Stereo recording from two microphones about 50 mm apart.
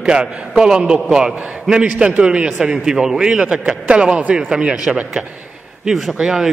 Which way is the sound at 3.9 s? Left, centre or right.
Right.